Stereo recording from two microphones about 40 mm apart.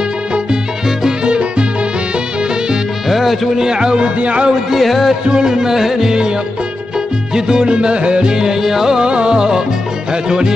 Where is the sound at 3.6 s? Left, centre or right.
Centre.